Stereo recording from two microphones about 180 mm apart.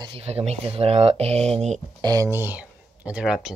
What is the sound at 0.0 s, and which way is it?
Speech, 30° right (ahead or behind).